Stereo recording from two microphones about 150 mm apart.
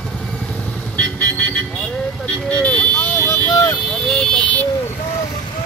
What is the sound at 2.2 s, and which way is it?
Vehicle, 10° left (ahead or behind).